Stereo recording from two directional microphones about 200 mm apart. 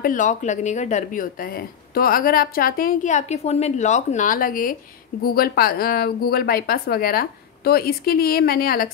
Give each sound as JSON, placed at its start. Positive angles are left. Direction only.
{"t": 0.0, "sound": "speech", "side_deg": 40}